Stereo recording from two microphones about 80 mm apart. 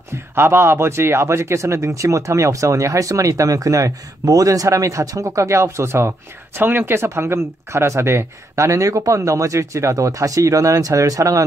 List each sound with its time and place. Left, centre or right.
0.4 s speech: right